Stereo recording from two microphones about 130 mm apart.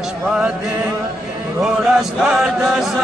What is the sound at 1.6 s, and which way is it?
Speech, 5° right (ahead or behind).